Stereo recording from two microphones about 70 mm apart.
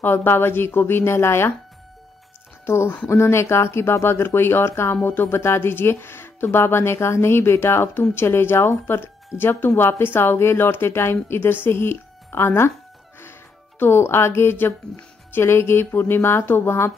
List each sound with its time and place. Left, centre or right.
0.0 s speech: left
2.6 s speech: left
13.2 s music: left
15.0 s speech: left